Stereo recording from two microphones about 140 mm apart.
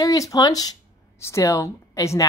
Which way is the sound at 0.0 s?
25° left (ahead or behind).